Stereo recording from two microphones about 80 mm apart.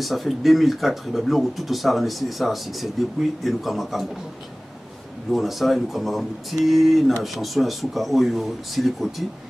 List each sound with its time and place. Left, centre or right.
0.0 s speech: centre
5.3 s speech: centre